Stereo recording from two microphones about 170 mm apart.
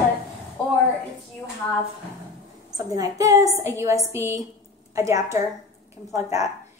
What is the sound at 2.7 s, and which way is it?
A child's voice, 20° right (ahead or behind).